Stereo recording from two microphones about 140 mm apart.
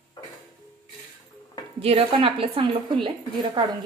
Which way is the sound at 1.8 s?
40° right (ahead or behind).